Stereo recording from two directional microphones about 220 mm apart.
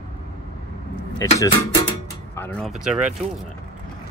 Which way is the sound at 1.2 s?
15° left (ahead or behind).